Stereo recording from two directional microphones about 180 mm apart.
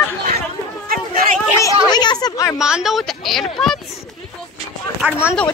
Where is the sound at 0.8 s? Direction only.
55° right (ahead or behind).